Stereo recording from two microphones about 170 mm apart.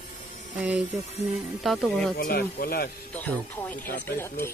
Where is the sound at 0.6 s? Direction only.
5° right (ahead or behind).